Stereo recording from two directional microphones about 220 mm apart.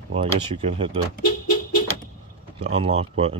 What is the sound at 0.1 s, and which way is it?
Speech, 25° right (ahead or behind).